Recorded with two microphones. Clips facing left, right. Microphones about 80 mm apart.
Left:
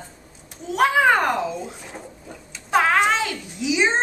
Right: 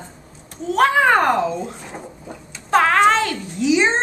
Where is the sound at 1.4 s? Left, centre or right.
Centre.